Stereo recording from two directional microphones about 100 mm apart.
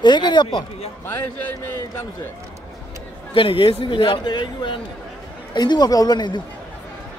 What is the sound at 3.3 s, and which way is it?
Speech, 60° left (ahead or behind).